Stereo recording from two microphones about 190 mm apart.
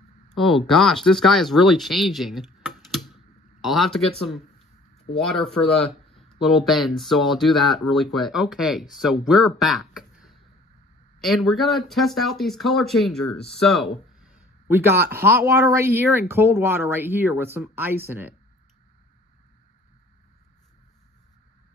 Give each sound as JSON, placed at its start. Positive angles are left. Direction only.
{"t": 0.3, "sound": "speech", "side_deg": 0}